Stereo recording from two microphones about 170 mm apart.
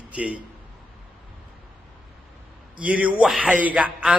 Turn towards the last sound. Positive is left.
turn(degrees=-5)  # may be behind; listen again after turning